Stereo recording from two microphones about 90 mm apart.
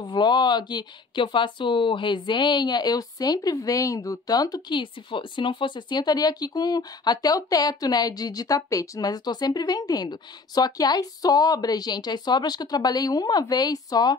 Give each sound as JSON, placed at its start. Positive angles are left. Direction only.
{"t": 0.0, "sound": "speech", "side_deg": 60}
{"t": 4.7, "sound": "speech", "side_deg": 65}